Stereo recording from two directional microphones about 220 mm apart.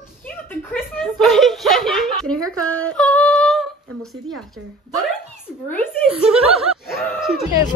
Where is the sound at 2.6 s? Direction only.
70° right (ahead or behind).